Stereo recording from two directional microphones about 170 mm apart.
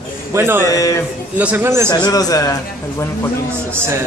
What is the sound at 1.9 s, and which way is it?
Speech, 20° left (ahead or behind).